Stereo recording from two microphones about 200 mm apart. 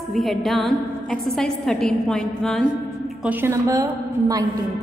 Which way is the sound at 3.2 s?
10° right (ahead or behind).